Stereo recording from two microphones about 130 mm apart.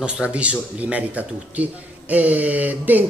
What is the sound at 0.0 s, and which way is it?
Speech, 10° right (ahead or behind).